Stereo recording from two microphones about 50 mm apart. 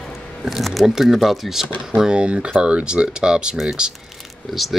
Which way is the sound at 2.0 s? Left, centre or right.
Centre.